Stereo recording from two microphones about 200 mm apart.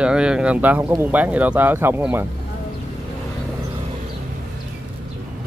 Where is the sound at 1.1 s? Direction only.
10° right (ahead or behind).